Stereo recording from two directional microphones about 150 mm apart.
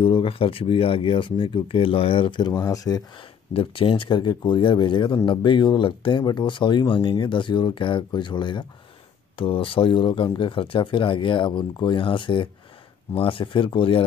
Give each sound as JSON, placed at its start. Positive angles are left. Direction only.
{"t": 0.0, "sound": "speech", "side_deg": 35}
{"t": 3.5, "sound": "speech", "side_deg": 35}